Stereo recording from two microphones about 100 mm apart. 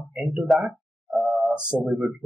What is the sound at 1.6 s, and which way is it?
Speech, 10° right (ahead or behind).